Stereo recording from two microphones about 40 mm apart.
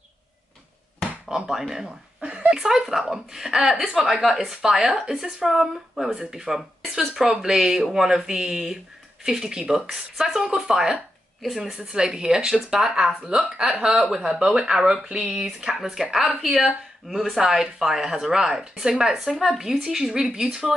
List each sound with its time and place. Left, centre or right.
1.5 s speech: centre
2.6 s a woman's voice: centre
4.6 s a woman's voice: centre
11.4 s speech: centre
11.8 s a woman's voice: centre